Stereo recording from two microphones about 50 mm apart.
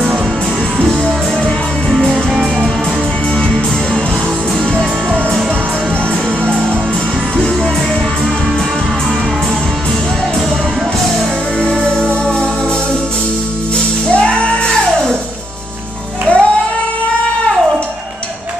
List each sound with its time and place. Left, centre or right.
14.2 s music: centre
16.3 s music: left